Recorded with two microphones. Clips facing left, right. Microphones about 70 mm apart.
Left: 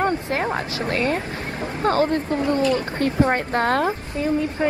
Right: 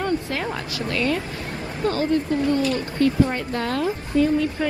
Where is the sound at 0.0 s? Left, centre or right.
Left.